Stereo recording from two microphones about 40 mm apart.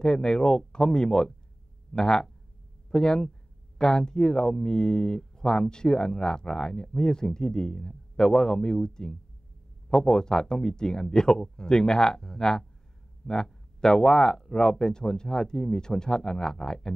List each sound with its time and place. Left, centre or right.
0.0 s speech: centre